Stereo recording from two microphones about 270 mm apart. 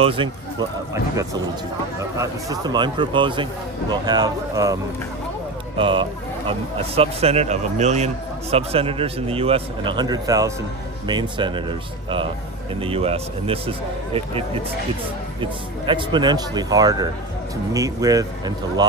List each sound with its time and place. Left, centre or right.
0.0 s speech: centre
5.8 s a man's voice: centre
12.8 s a man's voice: right